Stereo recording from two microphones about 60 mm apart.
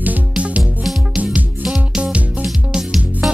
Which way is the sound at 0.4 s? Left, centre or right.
Right.